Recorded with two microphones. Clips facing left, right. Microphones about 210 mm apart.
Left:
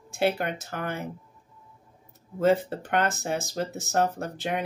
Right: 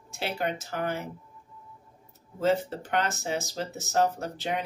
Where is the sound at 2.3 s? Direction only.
55° left (ahead or behind).